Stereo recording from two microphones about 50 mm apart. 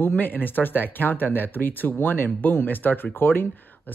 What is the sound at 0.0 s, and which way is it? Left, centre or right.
Speech, left.